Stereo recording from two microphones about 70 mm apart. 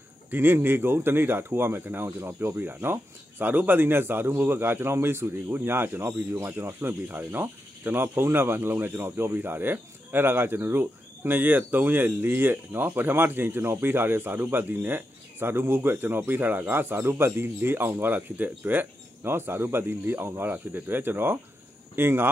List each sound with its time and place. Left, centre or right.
0.3 s speech: right